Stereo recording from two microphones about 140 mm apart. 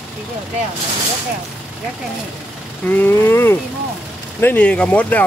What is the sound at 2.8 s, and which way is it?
Speech, 15° left (ahead or behind).